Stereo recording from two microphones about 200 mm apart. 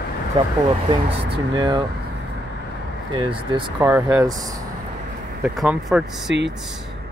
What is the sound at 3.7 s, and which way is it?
Speech, 10° right (ahead or behind).